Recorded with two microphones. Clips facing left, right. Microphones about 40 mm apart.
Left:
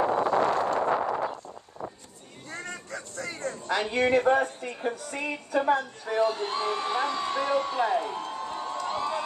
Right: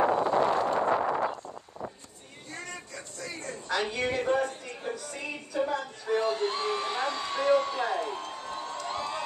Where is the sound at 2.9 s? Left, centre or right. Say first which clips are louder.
Left 4 dB; left.